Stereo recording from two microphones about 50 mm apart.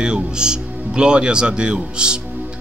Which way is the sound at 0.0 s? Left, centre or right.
Centre.